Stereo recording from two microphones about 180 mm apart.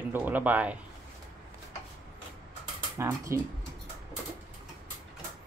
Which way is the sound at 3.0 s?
15° right (ahead or behind).